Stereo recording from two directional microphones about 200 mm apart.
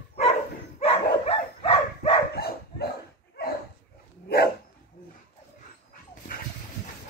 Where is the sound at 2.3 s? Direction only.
50° left (ahead or behind).